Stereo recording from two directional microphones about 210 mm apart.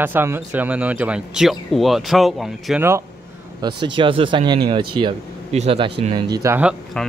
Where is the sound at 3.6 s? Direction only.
25° right (ahead or behind).